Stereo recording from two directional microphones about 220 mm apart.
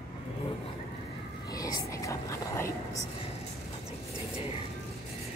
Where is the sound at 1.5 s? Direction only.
15° left (ahead or behind).